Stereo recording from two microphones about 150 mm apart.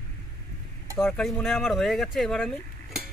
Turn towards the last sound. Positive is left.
turn(degrees=0)  # may be behind; listen again after turning